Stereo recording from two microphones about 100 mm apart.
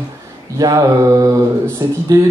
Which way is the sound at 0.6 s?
35° right (ahead or behind).